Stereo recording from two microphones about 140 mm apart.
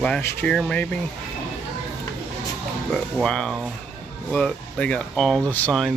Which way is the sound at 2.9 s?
5° left (ahead or behind).